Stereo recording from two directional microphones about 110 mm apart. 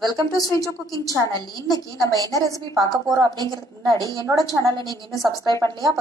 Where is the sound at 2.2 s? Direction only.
35° right (ahead or behind).